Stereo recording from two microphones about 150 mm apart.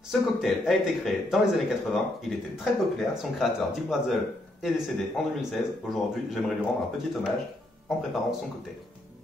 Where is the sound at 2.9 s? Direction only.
Centre (ahead or behind).